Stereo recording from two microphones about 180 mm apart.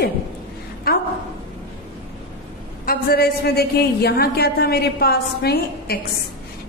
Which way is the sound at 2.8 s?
55° left (ahead or behind).